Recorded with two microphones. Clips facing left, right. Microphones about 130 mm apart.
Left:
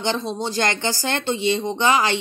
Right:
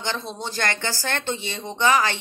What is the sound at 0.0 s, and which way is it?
Speech, 20° left (ahead or behind).